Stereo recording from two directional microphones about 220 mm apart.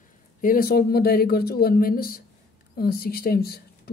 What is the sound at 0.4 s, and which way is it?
Speech, 40° left (ahead or behind).